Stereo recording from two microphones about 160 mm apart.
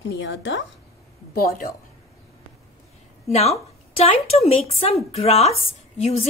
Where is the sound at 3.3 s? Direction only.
40° left (ahead or behind).